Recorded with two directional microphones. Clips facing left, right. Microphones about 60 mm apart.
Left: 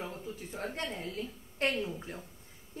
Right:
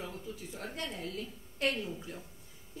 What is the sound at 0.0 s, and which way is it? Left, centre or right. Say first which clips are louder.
A woman's voice: left 2 dB; left.